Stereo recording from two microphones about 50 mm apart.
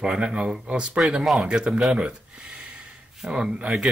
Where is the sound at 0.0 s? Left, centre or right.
Centre.